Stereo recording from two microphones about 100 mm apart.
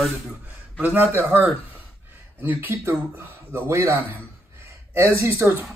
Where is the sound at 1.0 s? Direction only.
20° right (ahead or behind).